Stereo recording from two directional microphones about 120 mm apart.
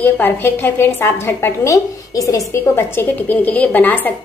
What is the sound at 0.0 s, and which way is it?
A woman's voice, 15° left (ahead or behind).